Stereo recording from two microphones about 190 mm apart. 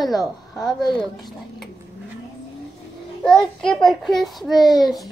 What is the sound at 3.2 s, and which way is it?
A woman's voice, 5° left (ahead or behind).